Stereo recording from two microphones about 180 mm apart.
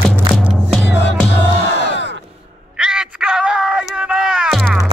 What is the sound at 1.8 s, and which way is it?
Crowd, 75° left (ahead or behind).